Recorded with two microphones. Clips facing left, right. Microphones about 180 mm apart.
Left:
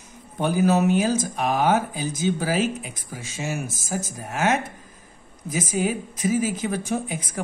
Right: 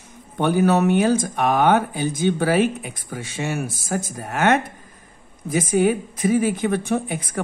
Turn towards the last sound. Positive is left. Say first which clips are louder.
# right 4 dB
turn(degrees=-60)  # may be behind; listen again after turning